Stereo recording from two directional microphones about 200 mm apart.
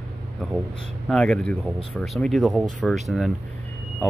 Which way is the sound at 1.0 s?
5° left (ahead or behind).